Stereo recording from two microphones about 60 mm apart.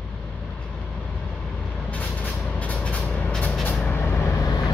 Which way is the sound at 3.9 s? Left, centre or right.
Left.